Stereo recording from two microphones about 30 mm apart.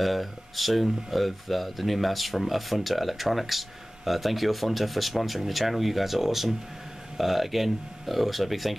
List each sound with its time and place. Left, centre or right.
0.0 s speech: centre